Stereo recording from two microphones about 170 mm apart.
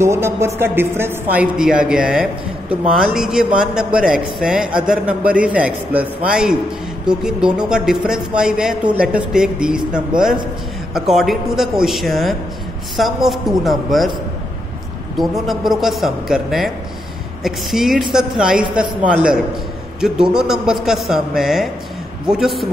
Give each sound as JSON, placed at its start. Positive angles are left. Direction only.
{"t": 0.0, "sound": "speech", "side_deg": -15}
{"t": 15.1, "sound": "speech", "side_deg": 0}